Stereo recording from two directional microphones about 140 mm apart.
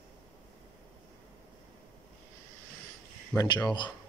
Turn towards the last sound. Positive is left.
turn(degrees=35)  # may be behind; listen again after turning